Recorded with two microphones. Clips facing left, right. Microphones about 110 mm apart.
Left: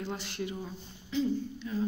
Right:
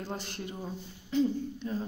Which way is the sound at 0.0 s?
45° right (ahead or behind).